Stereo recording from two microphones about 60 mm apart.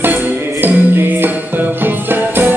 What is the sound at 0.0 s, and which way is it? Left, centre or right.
Music, right.